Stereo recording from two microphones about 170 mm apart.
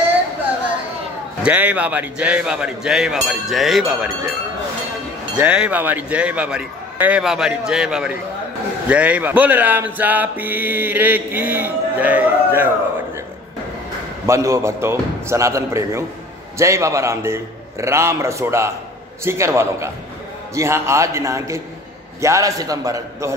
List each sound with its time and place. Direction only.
1.4 s a man's voice: 10° right (ahead or behind)
5.4 s speech: 5° right (ahead or behind)
14.2 s a man's voice: 15° right (ahead or behind)